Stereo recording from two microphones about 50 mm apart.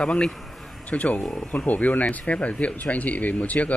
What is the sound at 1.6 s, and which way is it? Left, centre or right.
Speech, left.